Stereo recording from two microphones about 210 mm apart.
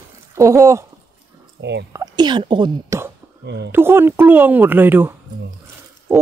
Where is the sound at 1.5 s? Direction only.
55° right (ahead or behind).